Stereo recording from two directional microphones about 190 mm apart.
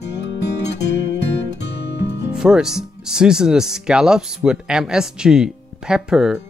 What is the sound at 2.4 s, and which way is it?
Speech, 5° right (ahead or behind).